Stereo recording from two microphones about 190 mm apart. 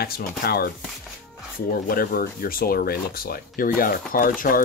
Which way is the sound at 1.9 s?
50° left (ahead or behind).